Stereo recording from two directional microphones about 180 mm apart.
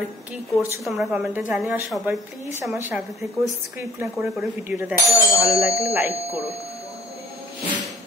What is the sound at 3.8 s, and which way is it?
Speech, 15° right (ahead or behind).